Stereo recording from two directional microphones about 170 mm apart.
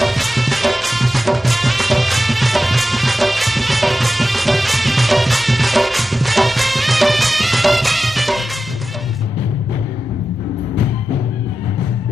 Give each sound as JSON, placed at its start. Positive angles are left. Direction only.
{"t": 0.0, "sound": "music", "side_deg": 0}